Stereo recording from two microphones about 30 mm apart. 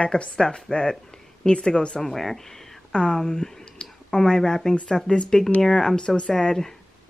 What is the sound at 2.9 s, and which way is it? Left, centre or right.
Speech, left.